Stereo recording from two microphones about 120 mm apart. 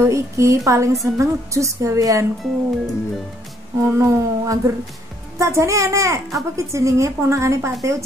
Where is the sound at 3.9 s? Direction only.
25° right (ahead or behind).